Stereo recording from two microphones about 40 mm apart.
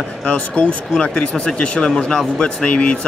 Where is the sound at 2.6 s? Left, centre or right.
Left.